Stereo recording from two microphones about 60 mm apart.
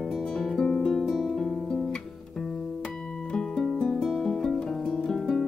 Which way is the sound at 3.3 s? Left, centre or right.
Centre.